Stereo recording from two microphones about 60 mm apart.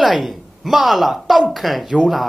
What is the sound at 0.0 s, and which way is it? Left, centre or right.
A woman's voice, centre.